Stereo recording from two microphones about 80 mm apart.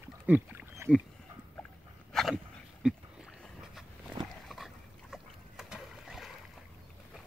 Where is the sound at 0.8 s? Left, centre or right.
Right.